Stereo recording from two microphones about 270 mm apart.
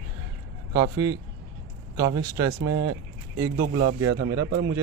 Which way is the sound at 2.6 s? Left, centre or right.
Right.